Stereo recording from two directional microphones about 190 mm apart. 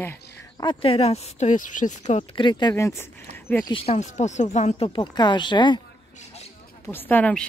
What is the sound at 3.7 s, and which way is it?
Speech, 35° left (ahead or behind).